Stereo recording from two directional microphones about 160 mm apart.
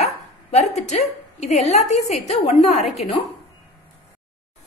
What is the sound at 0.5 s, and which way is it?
A woman's voice, 45° left (ahead or behind).